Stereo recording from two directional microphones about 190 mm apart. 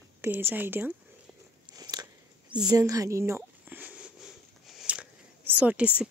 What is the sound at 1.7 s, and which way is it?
Biting, 20° right (ahead or behind).